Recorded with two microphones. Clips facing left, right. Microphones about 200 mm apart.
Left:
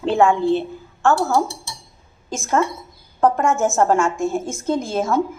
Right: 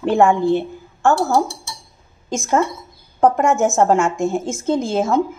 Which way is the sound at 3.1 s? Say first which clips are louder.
Right 2 dB; 15° right (ahead or behind).